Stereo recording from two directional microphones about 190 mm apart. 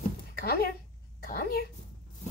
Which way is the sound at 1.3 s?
50° left (ahead or behind).